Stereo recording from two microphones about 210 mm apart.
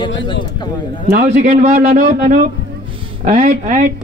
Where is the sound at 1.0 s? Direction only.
45° right (ahead or behind).